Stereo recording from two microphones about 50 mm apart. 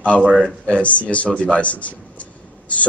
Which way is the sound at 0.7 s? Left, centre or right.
Left.